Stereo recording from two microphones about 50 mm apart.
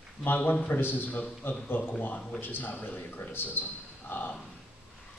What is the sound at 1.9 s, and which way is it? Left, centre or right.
A man's voice, left.